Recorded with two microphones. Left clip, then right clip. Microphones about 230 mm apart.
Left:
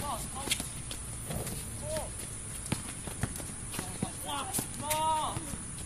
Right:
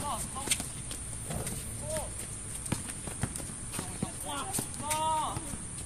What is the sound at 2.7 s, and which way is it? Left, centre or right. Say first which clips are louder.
Run: even; centre.